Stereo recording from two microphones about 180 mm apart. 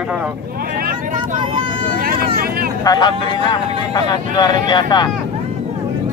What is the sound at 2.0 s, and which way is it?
Vehicle, 55° right (ahead or behind).